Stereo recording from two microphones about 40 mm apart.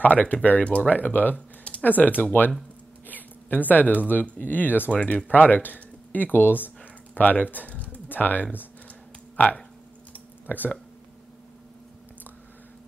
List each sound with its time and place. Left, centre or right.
0.0 s speech: left
3.1 s a sound: left
4.1 s speech: left
4.9 s speech: left
5.3 s speech: left
7.2 s speech: left
7.7 s typing: left
8.1 s speech: left
10.1 s a sound: left